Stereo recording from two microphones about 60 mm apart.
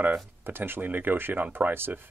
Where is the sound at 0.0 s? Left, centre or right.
Right.